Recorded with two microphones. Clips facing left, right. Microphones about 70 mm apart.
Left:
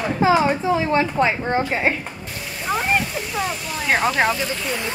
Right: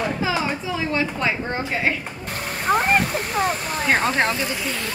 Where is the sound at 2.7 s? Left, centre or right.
Right.